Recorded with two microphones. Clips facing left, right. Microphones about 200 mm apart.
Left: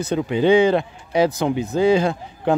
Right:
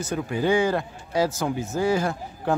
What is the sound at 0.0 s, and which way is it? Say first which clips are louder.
A man's voice: left 6 dB; 20° left (ahead or behind).